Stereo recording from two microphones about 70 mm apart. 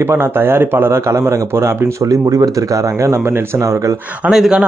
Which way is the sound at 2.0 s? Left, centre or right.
Right.